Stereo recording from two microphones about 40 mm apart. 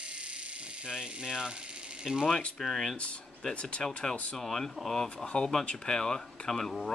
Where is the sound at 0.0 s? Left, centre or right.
Right.